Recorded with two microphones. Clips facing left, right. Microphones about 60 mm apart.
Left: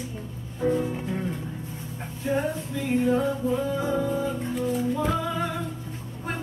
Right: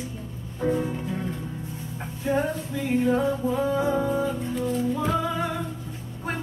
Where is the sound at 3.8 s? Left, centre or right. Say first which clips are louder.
Right 2 dB; centre.